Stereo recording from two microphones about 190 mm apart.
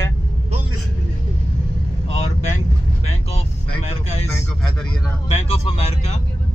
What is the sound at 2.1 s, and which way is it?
Speech, 40° left (ahead or behind).